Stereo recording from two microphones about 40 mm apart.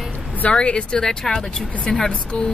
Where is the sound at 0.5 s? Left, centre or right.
Left.